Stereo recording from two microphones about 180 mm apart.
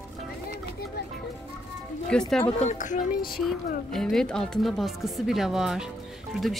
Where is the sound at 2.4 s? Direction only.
40° left (ahead or behind).